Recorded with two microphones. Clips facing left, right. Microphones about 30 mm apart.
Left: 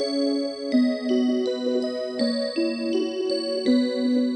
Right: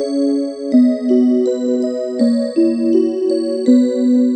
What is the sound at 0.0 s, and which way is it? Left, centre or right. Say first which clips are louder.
Music: right 7 dB; left.